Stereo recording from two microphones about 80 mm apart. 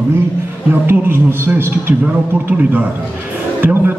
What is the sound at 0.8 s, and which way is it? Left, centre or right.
A man's voice, right.